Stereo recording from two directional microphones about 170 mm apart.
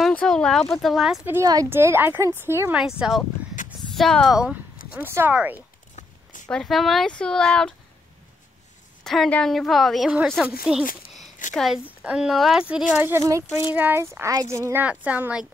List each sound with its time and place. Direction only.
0.0 s speech: 5° left (ahead or behind)
1.2 s speech: 15° right (ahead or behind)
2.8 s a woman's voice: centre (ahead or behind)
3.6 s a sound: 50° left (ahead or behind)
3.9 s a woman's voice: 5° left (ahead or behind)
6.4 s a woman's voice: 5° left (ahead or behind)
9.0 s a woman's voice: centre (ahead or behind)